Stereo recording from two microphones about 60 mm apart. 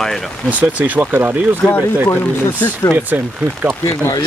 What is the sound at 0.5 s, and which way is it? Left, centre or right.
Speech, right.